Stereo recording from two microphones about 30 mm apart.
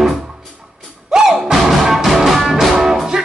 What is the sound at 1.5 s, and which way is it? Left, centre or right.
Music, centre.